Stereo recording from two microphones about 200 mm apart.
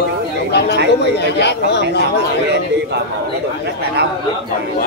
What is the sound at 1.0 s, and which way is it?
Speech, 55° left (ahead or behind).